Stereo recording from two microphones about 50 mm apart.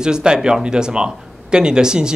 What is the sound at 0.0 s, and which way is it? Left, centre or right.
Speech, centre.